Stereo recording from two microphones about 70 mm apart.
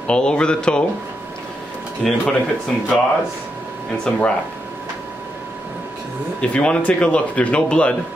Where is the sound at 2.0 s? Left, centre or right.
Centre.